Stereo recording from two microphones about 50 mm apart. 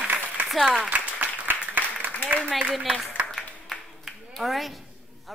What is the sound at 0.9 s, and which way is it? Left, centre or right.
Applause, right.